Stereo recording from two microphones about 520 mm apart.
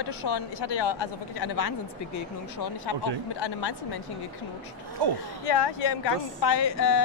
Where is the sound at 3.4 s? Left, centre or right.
Left.